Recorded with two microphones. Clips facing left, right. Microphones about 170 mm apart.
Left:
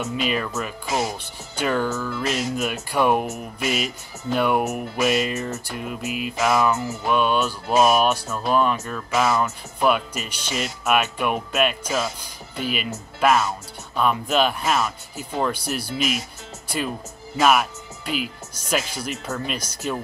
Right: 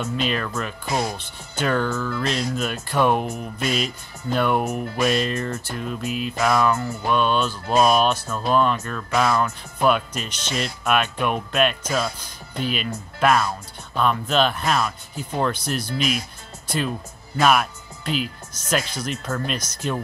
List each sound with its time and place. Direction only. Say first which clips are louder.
0.0 s speech: even; 5° left (ahead or behind)